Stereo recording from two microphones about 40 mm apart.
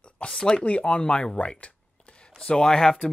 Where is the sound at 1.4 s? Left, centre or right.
Left.